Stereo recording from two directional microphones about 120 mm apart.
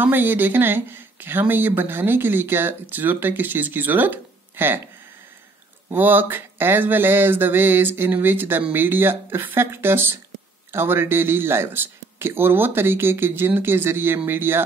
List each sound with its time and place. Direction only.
0.0 s speech: 15° right (ahead or behind)
5.9 s speech: 15° right (ahead or behind)